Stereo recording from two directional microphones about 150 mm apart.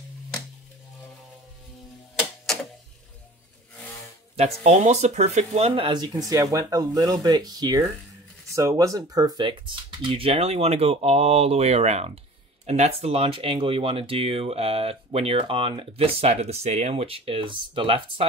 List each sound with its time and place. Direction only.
4.4 s speech: 45° right (ahead or behind)